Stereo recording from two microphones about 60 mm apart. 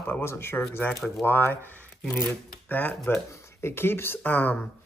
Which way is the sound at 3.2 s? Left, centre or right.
Left.